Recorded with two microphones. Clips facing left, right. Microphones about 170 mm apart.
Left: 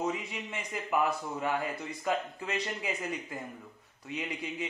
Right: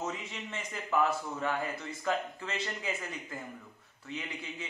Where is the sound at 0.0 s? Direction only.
10° left (ahead or behind).